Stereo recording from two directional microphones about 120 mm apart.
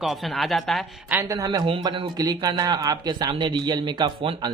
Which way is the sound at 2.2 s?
30° right (ahead or behind).